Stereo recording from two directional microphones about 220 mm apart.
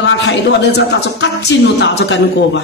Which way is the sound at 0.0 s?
55° left (ahead or behind).